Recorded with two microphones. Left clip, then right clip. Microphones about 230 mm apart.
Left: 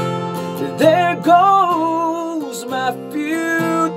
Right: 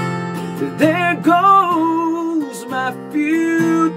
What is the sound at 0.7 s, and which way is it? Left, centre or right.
Music, centre.